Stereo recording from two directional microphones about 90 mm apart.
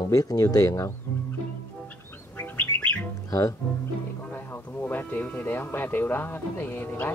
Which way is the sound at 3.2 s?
40° left (ahead or behind).